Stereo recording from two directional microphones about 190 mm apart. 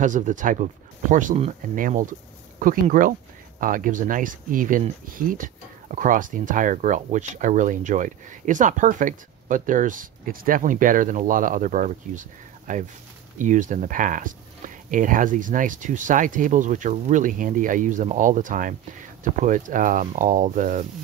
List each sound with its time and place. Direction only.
0.0 s speech: 40° right (ahead or behind)